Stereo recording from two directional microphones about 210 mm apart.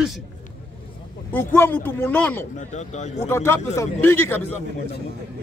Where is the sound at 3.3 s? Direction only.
10° left (ahead or behind).